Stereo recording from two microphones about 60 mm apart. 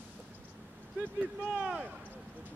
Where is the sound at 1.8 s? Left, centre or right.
Right.